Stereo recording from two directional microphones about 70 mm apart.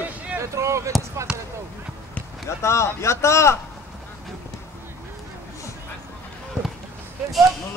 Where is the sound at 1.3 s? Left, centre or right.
Centre.